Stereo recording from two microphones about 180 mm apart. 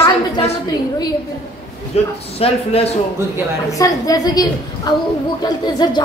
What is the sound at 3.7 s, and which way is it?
A woman's voice, 20° left (ahead or behind).